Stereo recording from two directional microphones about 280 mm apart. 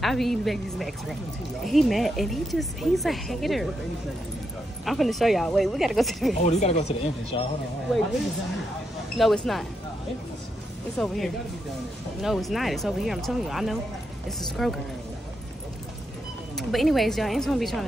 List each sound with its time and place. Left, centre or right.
0.0 s a woman's voice: centre
4.8 s a woman's voice: centre
6.4 s speech: left
9.2 s a woman's voice: centre
11.0 s a woman's voice: centre
16.5 s a woman's voice: centre